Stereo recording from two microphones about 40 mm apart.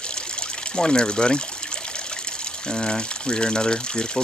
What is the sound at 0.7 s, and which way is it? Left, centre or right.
Speech, centre.